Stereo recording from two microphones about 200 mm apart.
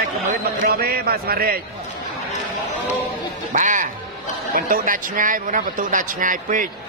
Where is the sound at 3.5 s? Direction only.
40° right (ahead or behind).